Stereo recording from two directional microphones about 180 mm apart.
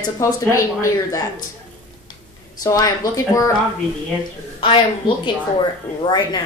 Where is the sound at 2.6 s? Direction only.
20° left (ahead or behind).